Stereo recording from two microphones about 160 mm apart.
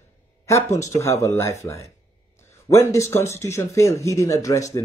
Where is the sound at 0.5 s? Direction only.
15° left (ahead or behind).